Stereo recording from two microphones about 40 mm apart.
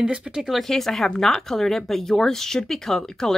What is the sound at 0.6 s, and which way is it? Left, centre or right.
Speech, centre.